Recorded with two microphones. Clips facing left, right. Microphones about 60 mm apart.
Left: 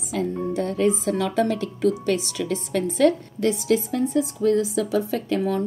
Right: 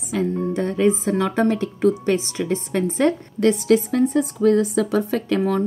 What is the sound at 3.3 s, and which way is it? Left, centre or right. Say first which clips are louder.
A woman's voice: right 5 dB; right.